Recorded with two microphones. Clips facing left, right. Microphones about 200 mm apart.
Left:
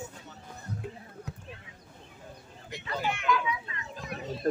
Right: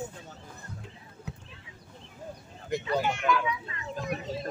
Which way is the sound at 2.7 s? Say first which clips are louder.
Right 12 dB; 50° right (ahead or behind).